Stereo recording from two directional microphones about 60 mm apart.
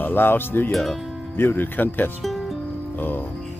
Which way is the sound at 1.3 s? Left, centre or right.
Left.